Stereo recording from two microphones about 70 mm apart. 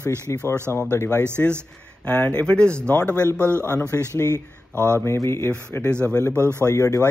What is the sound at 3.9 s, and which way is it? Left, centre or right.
Speech, left.